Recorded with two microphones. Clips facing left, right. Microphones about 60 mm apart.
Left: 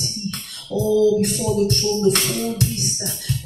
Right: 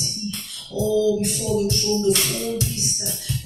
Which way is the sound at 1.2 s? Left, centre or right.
Left.